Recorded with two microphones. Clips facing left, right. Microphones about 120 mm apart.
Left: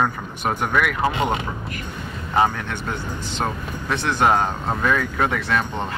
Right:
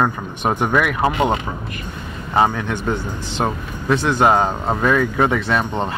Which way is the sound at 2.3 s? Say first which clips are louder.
Right 3 dB; 20° right (ahead or behind).